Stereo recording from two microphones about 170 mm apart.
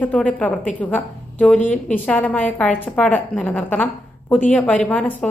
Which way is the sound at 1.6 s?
50° left (ahead or behind).